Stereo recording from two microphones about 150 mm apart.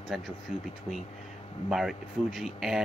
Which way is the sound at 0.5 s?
50° left (ahead or behind).